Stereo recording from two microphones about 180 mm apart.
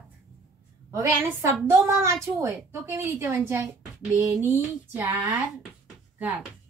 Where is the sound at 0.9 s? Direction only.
15° right (ahead or behind).